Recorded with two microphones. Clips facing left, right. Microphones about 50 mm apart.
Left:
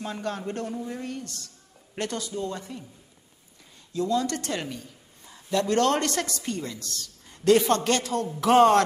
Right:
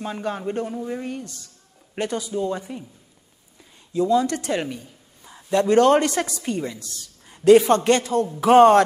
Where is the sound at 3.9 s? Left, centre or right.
Centre.